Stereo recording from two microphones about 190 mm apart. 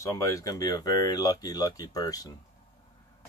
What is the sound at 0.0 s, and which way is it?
Speech, 15° left (ahead or behind).